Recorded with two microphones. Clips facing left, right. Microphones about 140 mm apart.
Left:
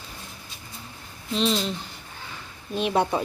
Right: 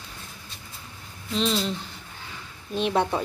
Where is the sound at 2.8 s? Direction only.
5° left (ahead or behind).